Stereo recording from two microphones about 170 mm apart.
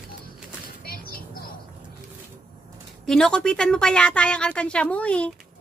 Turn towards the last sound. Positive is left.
turn(degrees=5)  # may be behind; listen again after turning